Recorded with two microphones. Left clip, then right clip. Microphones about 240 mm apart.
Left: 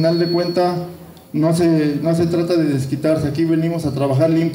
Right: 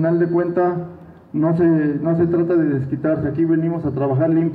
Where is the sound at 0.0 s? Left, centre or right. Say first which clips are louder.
Left 1 dB; left.